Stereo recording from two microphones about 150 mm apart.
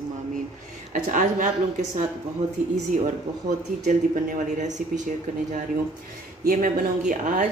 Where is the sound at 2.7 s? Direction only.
60° right (ahead or behind).